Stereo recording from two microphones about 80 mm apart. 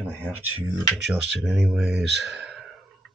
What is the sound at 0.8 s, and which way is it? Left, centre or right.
Speech, centre.